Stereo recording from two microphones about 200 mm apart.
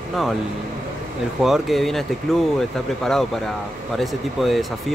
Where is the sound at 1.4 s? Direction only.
Centre (ahead or behind).